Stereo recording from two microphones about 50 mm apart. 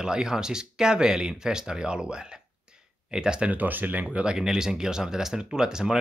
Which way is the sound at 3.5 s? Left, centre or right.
Right.